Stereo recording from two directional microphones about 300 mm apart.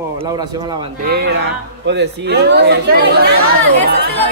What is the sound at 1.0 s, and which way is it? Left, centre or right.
Speech, right.